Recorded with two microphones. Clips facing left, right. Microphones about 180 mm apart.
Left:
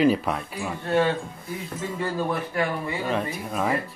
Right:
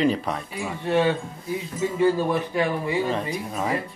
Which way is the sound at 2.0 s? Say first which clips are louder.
Right 6 dB; 20° right (ahead or behind).